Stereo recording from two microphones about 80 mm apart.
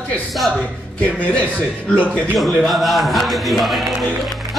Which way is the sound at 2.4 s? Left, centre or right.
Centre.